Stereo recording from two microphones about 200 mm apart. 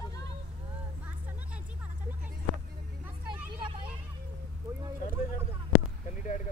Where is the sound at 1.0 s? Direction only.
10° right (ahead or behind).